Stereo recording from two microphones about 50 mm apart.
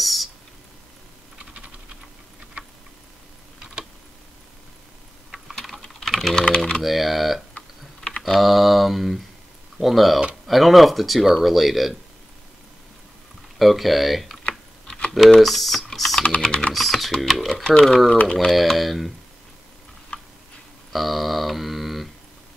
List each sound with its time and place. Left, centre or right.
0.0 s a sound: centre
5.5 s typing: centre
6.8 s speech: centre
7.5 s typing: left
8.2 s speech: centre
13.6 s speech: centre
15.4 s speech: centre
16.2 s speech: left
16.7 s speech: centre
18.1 s speech: left
18.5 s speech: centre
20.1 s tick-tock: left
20.9 s a sound: centre